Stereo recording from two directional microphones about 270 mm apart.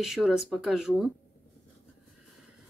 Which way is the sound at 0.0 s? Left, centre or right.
Centre.